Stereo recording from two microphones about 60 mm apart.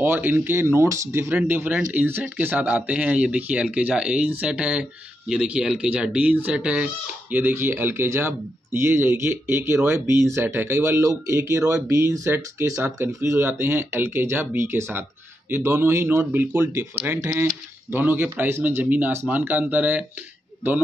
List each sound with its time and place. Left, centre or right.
0.0 s speech: right
7.3 s speech: right
16.1 s speech: right
16.7 s speech: right
17.9 s speech: right